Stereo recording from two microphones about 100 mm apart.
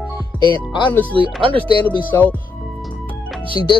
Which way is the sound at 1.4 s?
60° right (ahead or behind).